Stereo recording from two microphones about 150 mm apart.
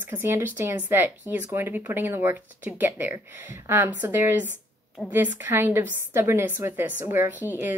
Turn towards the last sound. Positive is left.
turn(degrees=-15)  # may be behind; listen again after turning